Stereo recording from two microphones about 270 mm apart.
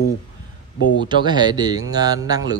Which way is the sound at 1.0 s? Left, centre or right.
Centre.